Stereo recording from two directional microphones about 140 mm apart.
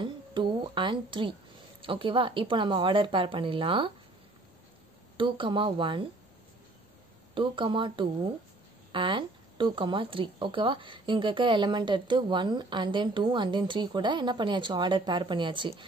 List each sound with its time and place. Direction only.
0.0 s a sound: 35° right (ahead or behind)
1.8 s speech: 40° right (ahead or behind)
5.1 s speech: 35° right (ahead or behind)
7.3 s speech: 35° right (ahead or behind)